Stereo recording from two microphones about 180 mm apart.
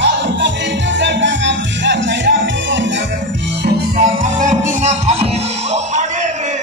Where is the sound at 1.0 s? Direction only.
90° right.